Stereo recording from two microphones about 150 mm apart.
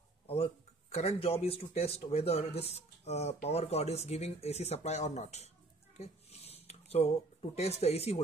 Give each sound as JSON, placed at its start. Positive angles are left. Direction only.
{"t": 0.9, "sound": "speech", "side_deg": 40}
{"t": 5.9, "sound": "a sound", "side_deg": 45}
{"t": 7.5, "sound": "speech", "side_deg": 45}